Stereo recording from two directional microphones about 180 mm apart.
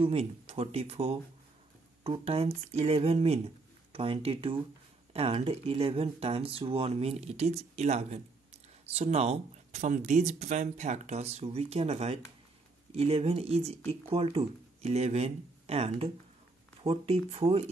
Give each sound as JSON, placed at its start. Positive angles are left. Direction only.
{"t": 0.0, "sound": "speech", "side_deg": -35}